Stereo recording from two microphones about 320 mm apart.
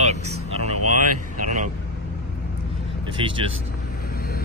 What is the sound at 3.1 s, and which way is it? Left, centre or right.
Speech, centre.